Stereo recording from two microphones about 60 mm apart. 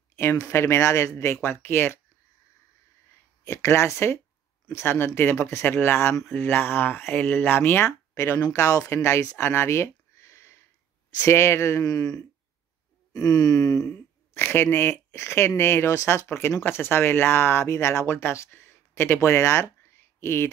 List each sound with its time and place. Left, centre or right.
0.4 s speech: left
3.4 s speech: left
8.5 s speech: left
8.8 s speech: left
11.8 s a sound: left
14.3 s speech: left
18.5 s a sound: left